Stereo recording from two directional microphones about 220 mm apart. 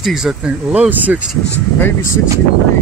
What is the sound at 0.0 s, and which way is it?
Speech, centre (ahead or behind).